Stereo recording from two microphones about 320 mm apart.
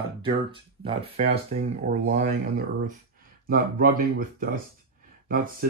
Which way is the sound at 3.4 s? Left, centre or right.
Right.